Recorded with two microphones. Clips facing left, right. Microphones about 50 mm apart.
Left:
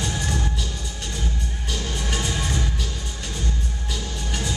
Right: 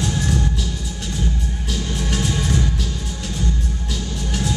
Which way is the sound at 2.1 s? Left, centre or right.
Centre.